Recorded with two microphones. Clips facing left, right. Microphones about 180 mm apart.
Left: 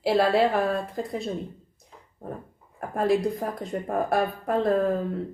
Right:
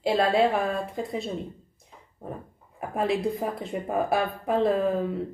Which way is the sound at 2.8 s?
Centre (ahead or behind).